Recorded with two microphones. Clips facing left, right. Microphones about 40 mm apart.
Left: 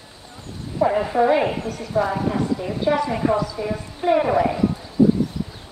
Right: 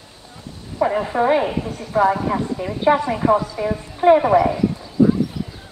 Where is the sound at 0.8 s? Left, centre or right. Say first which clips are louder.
Even; centre.